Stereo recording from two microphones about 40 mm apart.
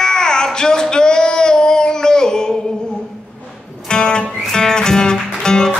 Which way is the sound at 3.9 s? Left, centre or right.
Left.